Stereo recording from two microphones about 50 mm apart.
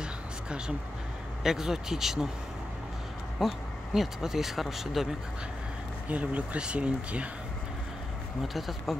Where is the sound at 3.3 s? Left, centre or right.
Centre.